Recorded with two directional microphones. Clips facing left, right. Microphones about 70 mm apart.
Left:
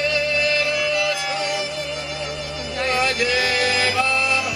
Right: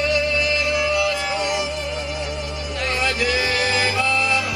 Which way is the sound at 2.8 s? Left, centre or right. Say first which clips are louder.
Left 3 dB; left.